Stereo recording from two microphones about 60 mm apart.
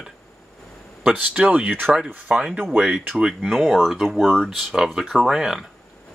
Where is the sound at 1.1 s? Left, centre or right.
Right.